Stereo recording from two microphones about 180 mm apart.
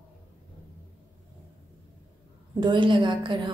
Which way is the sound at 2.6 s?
25° right (ahead or behind).